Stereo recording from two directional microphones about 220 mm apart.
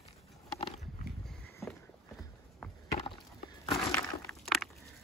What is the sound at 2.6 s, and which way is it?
Chop, 5° left (ahead or behind).